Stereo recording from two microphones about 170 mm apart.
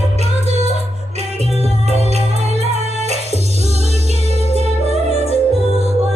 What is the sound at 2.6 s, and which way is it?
Music, 40° right (ahead or behind).